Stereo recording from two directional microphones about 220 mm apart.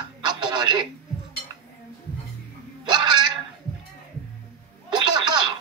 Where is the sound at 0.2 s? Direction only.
20° right (ahead or behind).